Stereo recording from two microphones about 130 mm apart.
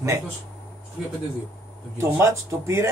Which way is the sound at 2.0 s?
20° right (ahead or behind).